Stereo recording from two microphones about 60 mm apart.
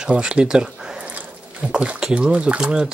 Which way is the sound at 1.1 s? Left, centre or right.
Centre.